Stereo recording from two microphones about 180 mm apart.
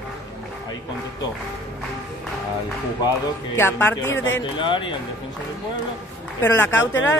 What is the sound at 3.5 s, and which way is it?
Speech, 10° left (ahead or behind).